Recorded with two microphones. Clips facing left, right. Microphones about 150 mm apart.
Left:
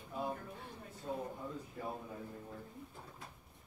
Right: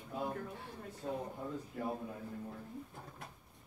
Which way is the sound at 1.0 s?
55° right (ahead or behind).